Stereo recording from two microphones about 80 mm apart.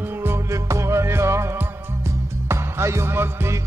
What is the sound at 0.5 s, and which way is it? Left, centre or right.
Music, right.